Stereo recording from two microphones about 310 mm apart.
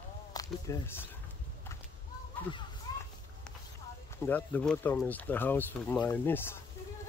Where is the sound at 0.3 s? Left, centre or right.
Centre.